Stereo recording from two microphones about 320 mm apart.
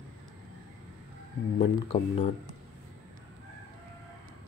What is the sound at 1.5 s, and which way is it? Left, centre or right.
Speech, centre.